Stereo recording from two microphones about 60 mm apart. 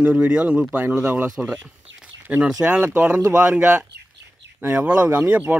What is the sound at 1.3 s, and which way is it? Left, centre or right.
Speech, centre.